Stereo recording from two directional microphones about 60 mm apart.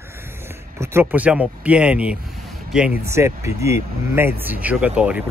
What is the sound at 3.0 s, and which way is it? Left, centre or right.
Speech, right.